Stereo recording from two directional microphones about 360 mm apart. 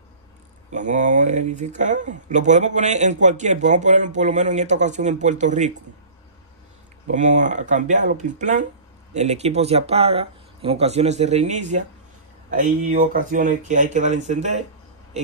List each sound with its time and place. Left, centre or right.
0.7 s speech: centre
7.1 s speech: centre